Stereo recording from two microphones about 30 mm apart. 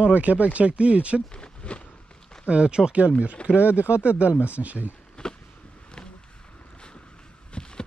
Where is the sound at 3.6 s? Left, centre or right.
Right.